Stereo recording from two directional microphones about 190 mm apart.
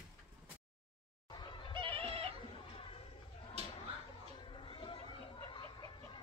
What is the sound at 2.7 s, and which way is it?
Chatter, 30° left (ahead or behind).